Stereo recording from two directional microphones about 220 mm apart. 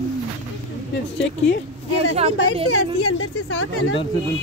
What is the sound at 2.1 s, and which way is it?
Speech, 25° right (ahead or behind).